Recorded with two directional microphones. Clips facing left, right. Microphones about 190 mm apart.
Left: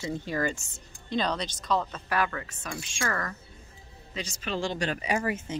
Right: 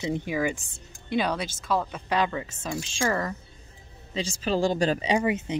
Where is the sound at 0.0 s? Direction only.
15° right (ahead or behind); by 5.0 s 35° right (ahead or behind).